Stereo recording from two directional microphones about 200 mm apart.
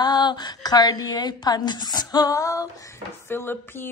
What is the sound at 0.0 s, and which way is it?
A woman's voice, 20° left (ahead or behind).